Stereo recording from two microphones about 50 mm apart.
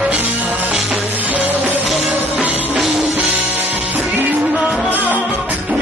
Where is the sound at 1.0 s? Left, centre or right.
Right.